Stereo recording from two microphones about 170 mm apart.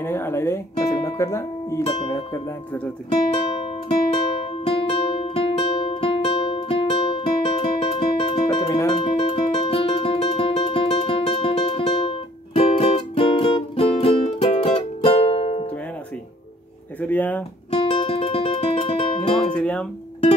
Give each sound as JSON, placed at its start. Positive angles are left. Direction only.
{"t": 0.0, "sound": "music", "side_deg": 15}
{"t": 2.0, "sound": "speech", "side_deg": 20}
{"t": 4.6, "sound": "music", "side_deg": 30}
{"t": 8.5, "sound": "music", "side_deg": 20}
{"t": 17.0, "sound": "a sound", "side_deg": 10}
{"t": 17.6, "sound": "music", "side_deg": 35}
{"t": 19.5, "sound": "music", "side_deg": 5}